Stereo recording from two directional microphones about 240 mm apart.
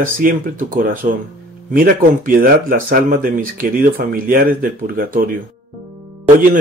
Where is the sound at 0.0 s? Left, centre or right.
Right.